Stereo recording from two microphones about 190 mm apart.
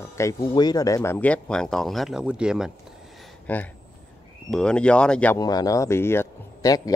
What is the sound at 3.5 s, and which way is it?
Speech, 10° left (ahead or behind).